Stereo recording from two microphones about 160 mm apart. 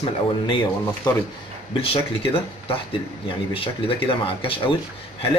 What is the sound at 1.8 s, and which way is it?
A man's voice, 35° left (ahead or behind).